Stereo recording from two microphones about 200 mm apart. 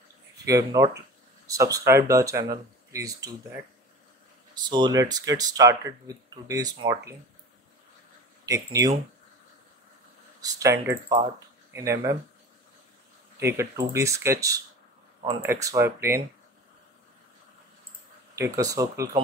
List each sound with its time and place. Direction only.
0.5 s speech: 15° right (ahead or behind)
4.6 s speech: 20° right (ahead or behind)
8.5 s speech: 15° right (ahead or behind)
10.4 s speech: 15° right (ahead or behind)
13.4 s speech: 15° right (ahead or behind)
18.4 s speech: 15° right (ahead or behind)